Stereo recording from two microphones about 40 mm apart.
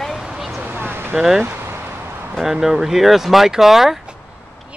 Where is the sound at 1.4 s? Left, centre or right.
Right.